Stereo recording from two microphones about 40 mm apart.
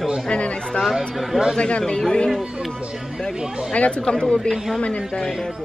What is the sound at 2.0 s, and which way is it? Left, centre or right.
Speech, centre.